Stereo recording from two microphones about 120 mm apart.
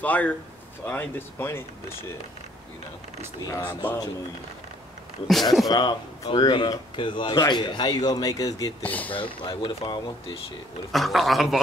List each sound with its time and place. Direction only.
0.0 s speech: 15° left (ahead or behind)
3.6 s speech: 15° left (ahead or behind)
5.7 s speech: 35° left (ahead or behind)
8.8 s speech: 15° left (ahead or behind)
9.1 s speech: 45° left (ahead or behind)
10.9 s a man's voice: centre (ahead or behind)